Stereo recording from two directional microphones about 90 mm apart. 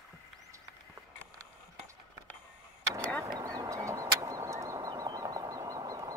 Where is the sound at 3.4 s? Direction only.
40° right (ahead or behind).